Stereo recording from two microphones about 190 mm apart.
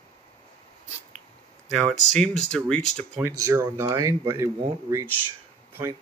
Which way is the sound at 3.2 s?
15° right (ahead or behind).